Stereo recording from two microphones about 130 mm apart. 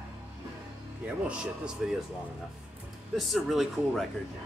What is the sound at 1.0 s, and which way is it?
Speech, 10° right (ahead or behind).